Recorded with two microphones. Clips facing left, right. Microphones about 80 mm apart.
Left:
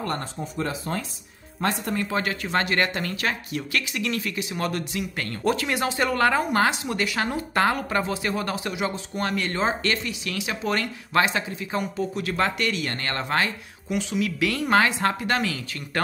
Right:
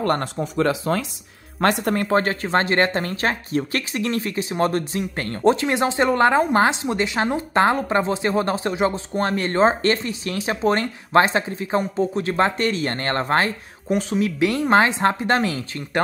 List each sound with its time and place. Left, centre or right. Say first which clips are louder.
0.0 s speech: right 7 dB; right
1.6 s speech: right 6 dB; right
2.2 s speech: right 5 dB; right